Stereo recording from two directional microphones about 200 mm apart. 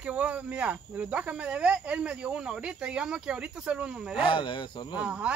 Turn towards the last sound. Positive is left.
turn(degrees=-5)  # may be behind; listen again after turning